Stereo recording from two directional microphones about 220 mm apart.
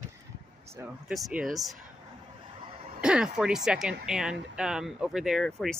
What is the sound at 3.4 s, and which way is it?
Speech, 5° right (ahead or behind).